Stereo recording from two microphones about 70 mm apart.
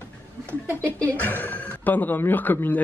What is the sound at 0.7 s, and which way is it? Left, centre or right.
A woman's voice, left.